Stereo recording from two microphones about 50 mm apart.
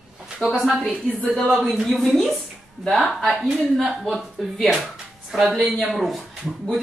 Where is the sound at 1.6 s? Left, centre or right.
Centre.